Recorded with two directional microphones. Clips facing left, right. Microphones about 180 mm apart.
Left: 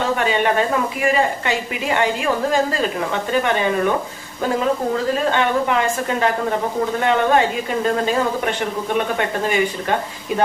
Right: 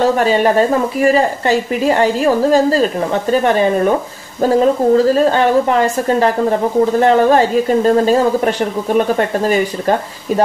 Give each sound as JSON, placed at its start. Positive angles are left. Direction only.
{"t": 0.2, "sound": "speech", "side_deg": -35}